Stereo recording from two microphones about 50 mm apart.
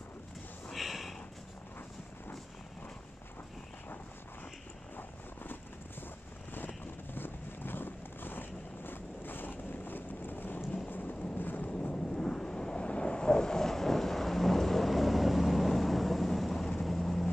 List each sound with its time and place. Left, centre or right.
0.7 s a sound: centre
4.9 s vehicle: left
7.2 s vehicle: left
10.9 s thunder: left
11.3 s vehicle: left
11.7 s vehicle: centre